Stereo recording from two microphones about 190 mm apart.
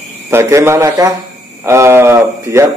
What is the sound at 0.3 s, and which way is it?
Speech, 15° right (ahead or behind).